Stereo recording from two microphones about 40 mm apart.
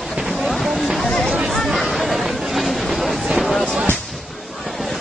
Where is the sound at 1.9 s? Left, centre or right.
Centre.